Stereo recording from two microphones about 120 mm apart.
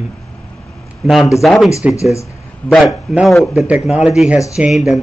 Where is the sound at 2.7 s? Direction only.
Centre (ahead or behind).